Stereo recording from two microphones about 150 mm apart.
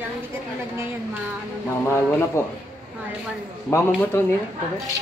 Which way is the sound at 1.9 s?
15° left (ahead or behind).